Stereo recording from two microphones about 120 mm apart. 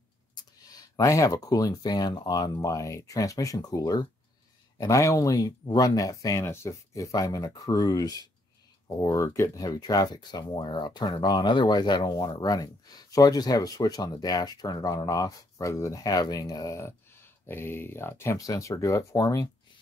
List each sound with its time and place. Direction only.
0.4 s speech: 30° left (ahead or behind)